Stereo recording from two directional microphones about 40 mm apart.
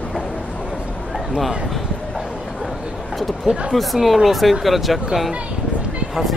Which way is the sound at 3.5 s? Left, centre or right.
Right.